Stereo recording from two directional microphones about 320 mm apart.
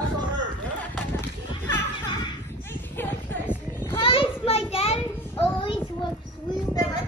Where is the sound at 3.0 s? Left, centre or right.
Centre.